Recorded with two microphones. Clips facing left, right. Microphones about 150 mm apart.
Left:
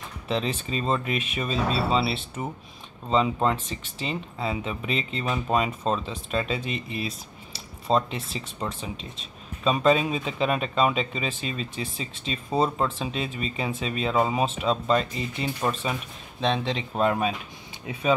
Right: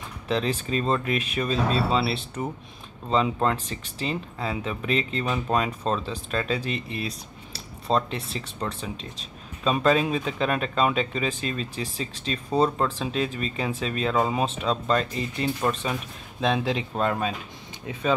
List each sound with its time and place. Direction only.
0.3 s speech: centre (ahead or behind)